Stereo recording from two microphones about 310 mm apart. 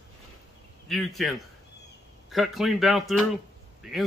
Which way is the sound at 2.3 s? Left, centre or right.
Centre.